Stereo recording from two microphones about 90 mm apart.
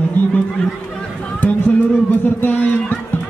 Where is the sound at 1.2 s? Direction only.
15° left (ahead or behind).